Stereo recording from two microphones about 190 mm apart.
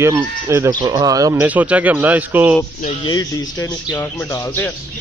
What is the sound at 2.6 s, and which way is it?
Speech, 20° left (ahead or behind).